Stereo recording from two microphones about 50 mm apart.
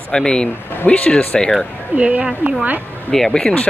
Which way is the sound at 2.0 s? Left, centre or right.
Right.